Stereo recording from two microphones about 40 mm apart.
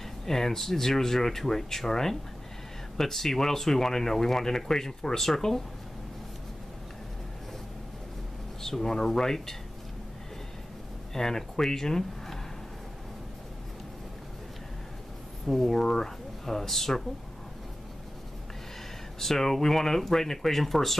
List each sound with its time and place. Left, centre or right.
0.3 s speech: centre
8.6 s speech: centre
11.1 s speech: centre
15.4 s speech: centre
19.1 s speech: centre